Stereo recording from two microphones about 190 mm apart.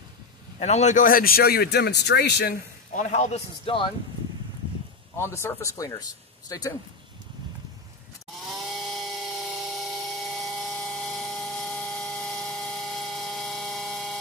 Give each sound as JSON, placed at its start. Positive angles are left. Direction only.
{"t": 0.6, "sound": "speech", "side_deg": 35}
{"t": 2.9, "sound": "speech", "side_deg": 40}
{"t": 5.1, "sound": "speech", "side_deg": 15}
{"t": 8.5, "sound": "chainsaw", "side_deg": 0}